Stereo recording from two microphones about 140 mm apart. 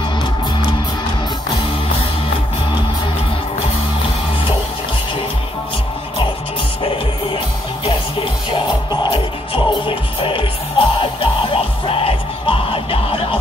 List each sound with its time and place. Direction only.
8.5 s music: 35° left (ahead or behind)